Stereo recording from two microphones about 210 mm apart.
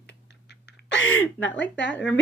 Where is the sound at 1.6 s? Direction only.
55° left (ahead or behind).